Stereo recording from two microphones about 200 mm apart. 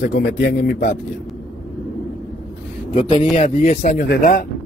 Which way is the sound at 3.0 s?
30° left (ahead or behind).